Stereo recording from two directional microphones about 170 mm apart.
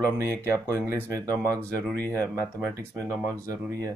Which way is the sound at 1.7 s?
10° left (ahead or behind).